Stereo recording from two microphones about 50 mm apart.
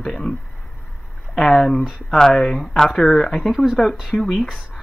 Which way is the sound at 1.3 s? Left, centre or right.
Centre.